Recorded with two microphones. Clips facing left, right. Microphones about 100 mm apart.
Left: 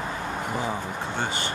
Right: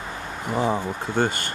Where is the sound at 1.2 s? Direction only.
50° right (ahead or behind).